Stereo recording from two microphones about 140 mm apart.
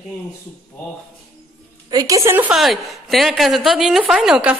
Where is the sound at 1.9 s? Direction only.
25° right (ahead or behind).